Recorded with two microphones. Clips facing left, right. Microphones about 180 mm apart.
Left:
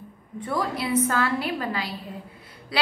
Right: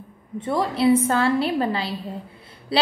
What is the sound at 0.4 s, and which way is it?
A woman's voice, 25° right (ahead or behind).